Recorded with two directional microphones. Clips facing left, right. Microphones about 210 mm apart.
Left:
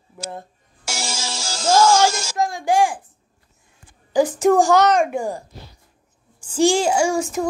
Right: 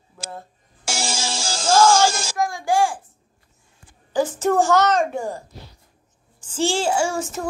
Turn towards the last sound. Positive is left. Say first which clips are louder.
# left 4 dB
turn(degrees=10)  # may be behind; listen again after turning